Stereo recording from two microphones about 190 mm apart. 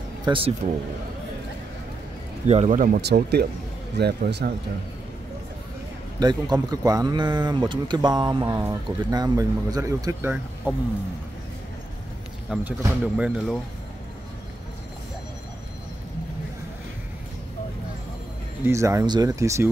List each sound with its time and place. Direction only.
0.2 s speech: 25° right (ahead or behind)
2.4 s speech: 35° right (ahead or behind)
3.0 s speech: 60° right (ahead or behind)
6.1 s speech: 20° right (ahead or behind)
12.4 s speech: 5° right (ahead or behind)
18.7 s speech: 15° right (ahead or behind)